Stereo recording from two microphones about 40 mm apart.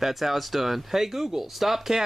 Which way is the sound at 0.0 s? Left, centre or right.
Centre.